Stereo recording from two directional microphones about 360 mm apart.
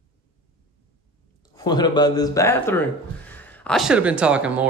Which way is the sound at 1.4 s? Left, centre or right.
Centre.